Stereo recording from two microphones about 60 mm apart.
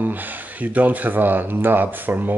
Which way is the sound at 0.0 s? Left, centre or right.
Right.